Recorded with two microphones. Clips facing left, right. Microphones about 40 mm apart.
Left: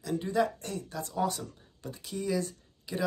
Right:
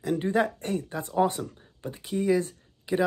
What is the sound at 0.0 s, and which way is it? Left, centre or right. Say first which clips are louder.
Speech: right 4 dB; right.